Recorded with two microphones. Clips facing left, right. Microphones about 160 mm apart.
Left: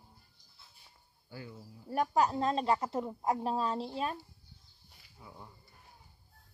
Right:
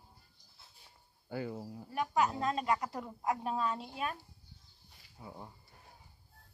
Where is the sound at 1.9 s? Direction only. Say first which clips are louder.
Left 3 dB; 35° left (ahead or behind).